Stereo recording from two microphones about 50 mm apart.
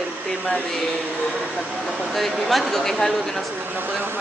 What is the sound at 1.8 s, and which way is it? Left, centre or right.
Speech, centre.